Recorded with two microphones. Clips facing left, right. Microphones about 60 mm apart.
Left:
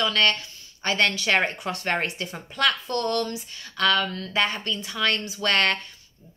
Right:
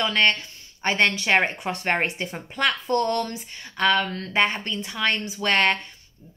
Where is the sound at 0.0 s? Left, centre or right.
Right.